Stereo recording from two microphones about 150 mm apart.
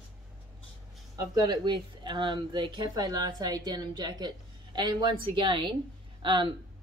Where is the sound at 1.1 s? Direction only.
25° right (ahead or behind).